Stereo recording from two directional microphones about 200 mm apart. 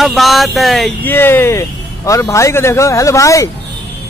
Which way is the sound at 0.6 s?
Centre (ahead or behind).